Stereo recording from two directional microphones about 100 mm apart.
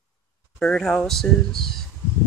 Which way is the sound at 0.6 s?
5° left (ahead or behind).